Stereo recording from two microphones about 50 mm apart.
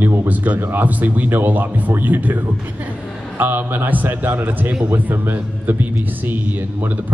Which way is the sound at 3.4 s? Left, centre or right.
Right.